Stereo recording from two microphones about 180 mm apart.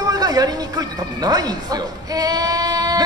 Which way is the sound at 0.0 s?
20° right (ahead or behind).